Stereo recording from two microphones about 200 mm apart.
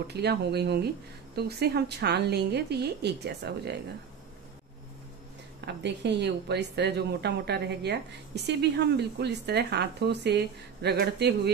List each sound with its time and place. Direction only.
0.1 s a woman's voice: 55° right (ahead or behind)
5.7 s a woman's voice: 60° right (ahead or behind)